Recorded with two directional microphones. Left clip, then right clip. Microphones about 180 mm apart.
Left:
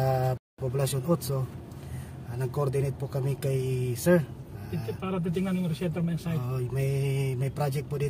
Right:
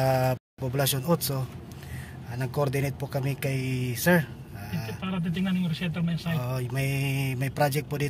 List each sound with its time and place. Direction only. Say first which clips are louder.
0.0 s speech: right 3 dB; centre (ahead or behind)
5.0 s a man's voice: left 1 dB; 55° left (ahead or behind)
6.3 s mantra: right 3 dB; 5° right (ahead or behind)